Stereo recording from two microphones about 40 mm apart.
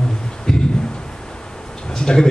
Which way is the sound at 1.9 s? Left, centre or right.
Centre.